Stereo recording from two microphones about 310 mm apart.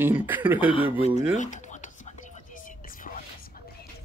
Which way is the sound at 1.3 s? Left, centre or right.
Left.